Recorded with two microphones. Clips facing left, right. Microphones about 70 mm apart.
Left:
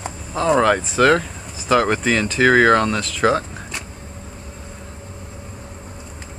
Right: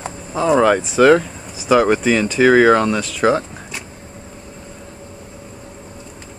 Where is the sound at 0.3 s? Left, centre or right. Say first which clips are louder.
Right 2 dB; centre.